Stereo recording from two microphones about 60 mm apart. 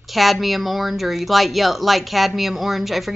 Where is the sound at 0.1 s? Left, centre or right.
Centre.